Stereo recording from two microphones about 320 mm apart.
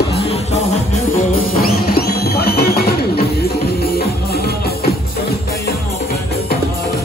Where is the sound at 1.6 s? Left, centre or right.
Left.